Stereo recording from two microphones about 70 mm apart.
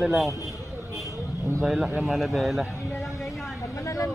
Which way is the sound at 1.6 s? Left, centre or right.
Centre.